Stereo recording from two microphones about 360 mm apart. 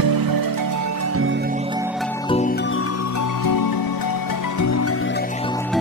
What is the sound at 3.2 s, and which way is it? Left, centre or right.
Music, left.